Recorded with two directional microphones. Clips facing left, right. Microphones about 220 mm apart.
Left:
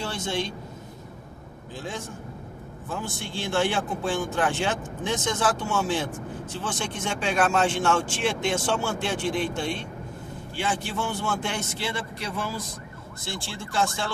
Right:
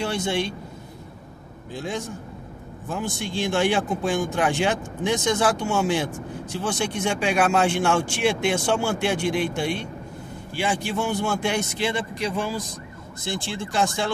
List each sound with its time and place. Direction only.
0.0 s a man's voice: 15° right (ahead or behind)
1.7 s speech: 15° right (ahead or behind)
3.2 s speech: 15° right (ahead or behind)